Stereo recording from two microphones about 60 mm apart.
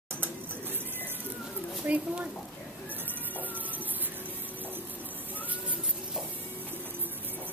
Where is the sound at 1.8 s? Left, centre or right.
Right.